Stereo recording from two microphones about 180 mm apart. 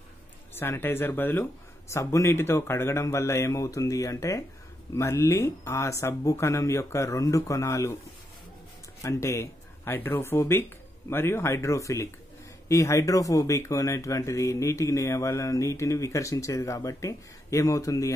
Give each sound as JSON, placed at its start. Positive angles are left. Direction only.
{"t": 0.6, "sound": "speech", "side_deg": 15}
{"t": 9.0, "sound": "speech", "side_deg": 15}